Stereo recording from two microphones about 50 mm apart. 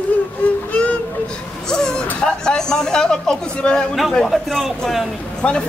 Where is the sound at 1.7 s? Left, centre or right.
Centre.